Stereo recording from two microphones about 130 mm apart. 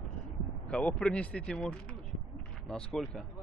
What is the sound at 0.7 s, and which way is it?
Speech, 10° left (ahead or behind).